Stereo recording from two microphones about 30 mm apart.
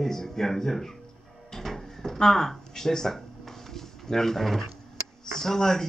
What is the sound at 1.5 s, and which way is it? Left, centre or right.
Drawer open or close, centre.